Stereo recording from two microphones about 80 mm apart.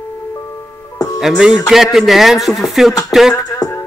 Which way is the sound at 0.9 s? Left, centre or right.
Left.